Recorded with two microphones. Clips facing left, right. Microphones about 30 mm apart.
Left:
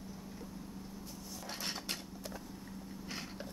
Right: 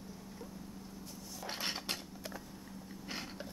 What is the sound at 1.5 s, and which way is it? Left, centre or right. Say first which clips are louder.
Dishes: right 3 dB; centre.